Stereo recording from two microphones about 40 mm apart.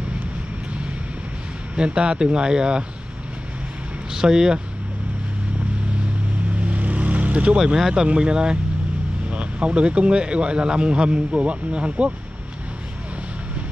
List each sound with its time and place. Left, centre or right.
1.8 s a man's voice: right
4.1 s speech: centre
6.5 s vehicle: right
7.5 s a man's voice: centre